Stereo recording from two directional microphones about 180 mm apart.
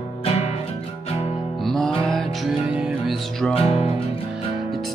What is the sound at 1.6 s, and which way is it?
Music, centre (ahead or behind).